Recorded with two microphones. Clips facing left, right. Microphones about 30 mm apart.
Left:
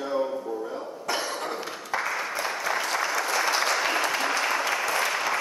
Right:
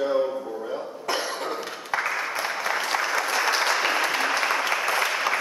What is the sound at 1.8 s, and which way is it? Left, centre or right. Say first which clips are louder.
Applause: right 2 dB; centre.